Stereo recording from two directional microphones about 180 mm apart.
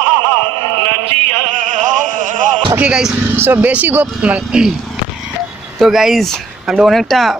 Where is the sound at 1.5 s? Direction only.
45° right (ahead or behind).